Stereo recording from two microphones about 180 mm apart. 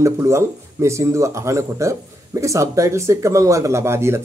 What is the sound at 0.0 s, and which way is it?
Speech, 15° right (ahead or behind).